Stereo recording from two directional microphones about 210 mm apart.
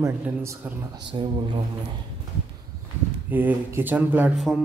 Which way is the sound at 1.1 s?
25° right (ahead or behind).